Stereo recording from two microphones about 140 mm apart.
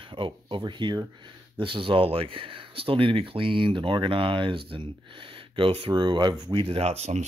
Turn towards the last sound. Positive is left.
turn(degrees=-50)  # may be behind; listen again after turning